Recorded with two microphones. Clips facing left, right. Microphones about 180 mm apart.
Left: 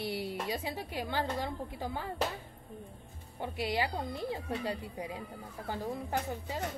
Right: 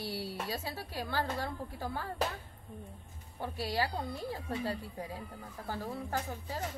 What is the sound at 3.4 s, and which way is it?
Speech, 20° left (ahead or behind).